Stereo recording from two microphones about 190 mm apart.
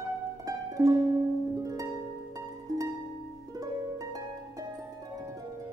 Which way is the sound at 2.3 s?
20° right (ahead or behind).